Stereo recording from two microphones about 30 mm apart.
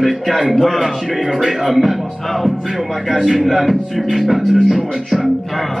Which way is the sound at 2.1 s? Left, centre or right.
Centre.